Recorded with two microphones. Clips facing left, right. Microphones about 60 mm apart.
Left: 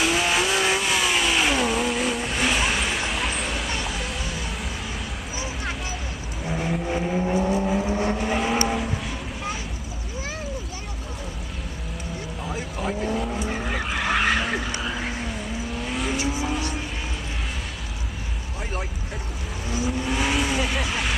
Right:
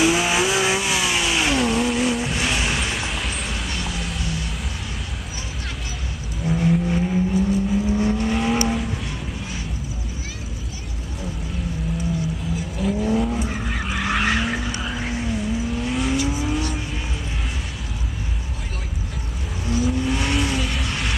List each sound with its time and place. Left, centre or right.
0.0 s vehicle: centre
6.4 s vehicle: centre
7.4 s vehicle: left
7.9 s vehicle: left
8.2 s vehicle: centre
13.1 s vehicle: centre
19.6 s vehicle: centre